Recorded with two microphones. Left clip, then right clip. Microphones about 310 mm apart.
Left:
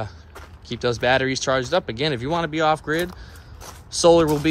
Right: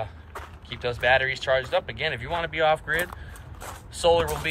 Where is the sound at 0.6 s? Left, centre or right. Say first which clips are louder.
Left 6 dB; left.